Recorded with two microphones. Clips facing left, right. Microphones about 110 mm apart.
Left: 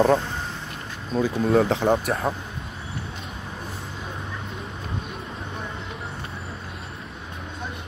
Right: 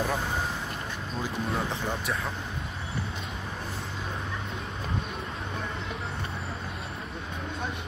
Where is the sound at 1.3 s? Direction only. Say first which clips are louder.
Left 12 dB; 75° left (ahead or behind).